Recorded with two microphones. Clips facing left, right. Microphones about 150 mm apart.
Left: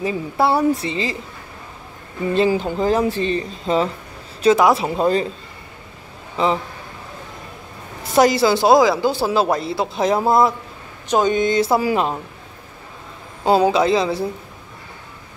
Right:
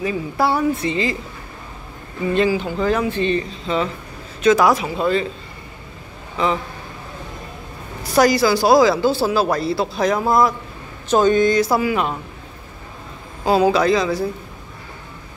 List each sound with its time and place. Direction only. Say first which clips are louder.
0.0 s speech: left 1 dB; 30° left (ahead or behind)
2.3 s a man's voice: left 1 dB; 35° left (ahead or behind)
4.8 s speech: left 2 dB; 40° left (ahead or behind)
6.3 s speech: left 1 dB; 30° left (ahead or behind)
8.0 s speech: even; 25° left (ahead or behind)
11.1 s speech: right 2 dB; 15° left (ahead or behind)
13.5 s speech: even; 25° left (ahead or behind)